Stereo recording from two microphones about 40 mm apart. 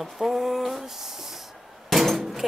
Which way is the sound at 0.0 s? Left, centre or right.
Centre.